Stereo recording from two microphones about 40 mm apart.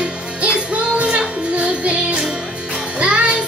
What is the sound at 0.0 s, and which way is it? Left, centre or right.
Music, right.